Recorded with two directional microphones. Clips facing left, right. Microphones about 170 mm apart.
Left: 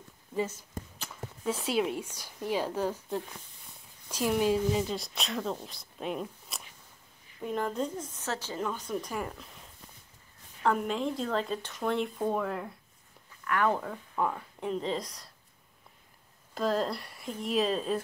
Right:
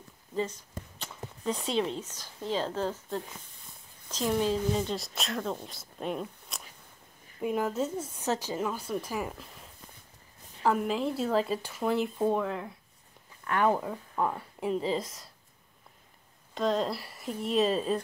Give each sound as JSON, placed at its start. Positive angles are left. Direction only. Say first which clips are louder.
{"t": 0.4, "sound": "speech", "louder": "even", "side_deg": 5}
{"t": 13.4, "sound": "a sound", "louder": "right 1 dB", "side_deg": -25}
{"t": 13.7, "sound": "speech", "louder": "right 2 dB", "side_deg": -10}
{"t": 16.5, "sound": "speech", "louder": "right 1 dB", "side_deg": 5}